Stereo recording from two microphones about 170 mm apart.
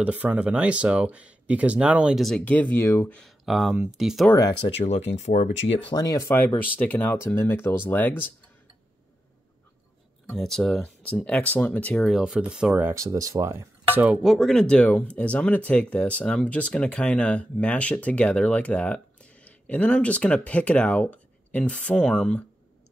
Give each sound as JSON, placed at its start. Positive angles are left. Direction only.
{"t": 0.0, "sound": "speech", "side_deg": -10}
{"t": 3.2, "sound": "speech", "side_deg": 0}
{"t": 4.3, "sound": "speech", "side_deg": 20}
{"t": 4.6, "sound": "speech", "side_deg": 35}
{"t": 5.9, "sound": "speech", "side_deg": 20}
{"t": 10.3, "sound": "speech", "side_deg": 5}